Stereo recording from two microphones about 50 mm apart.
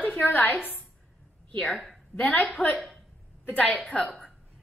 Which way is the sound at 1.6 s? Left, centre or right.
Centre.